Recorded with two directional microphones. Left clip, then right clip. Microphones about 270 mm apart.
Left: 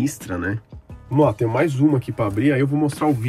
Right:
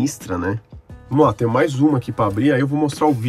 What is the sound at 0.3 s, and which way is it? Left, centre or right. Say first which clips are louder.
Speech: right 3 dB; centre.